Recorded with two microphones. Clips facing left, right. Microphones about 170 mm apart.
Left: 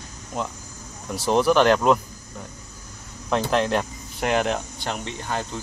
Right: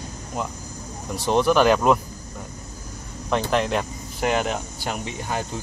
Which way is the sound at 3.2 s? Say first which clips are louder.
Even; centre (ahead or behind).